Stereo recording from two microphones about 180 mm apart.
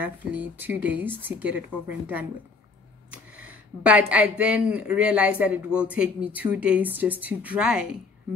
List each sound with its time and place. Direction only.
0.0 s speech: 10° right (ahead or behind)